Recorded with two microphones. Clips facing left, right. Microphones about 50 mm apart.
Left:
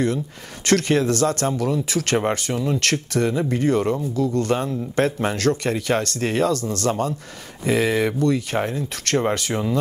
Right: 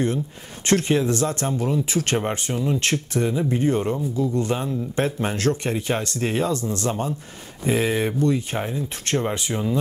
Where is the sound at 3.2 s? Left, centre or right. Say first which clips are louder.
Left 2 dB; left.